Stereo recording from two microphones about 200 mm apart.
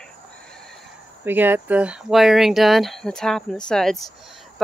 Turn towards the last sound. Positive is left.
turn(degrees=0)  # may be behind; listen again after turning